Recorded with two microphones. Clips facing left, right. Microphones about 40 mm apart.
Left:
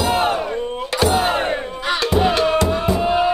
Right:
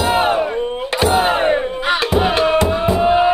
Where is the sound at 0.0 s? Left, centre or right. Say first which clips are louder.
Right 3 dB; right.